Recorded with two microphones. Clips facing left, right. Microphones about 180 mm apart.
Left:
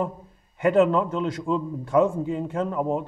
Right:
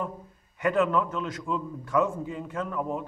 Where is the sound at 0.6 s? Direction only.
30° left (ahead or behind).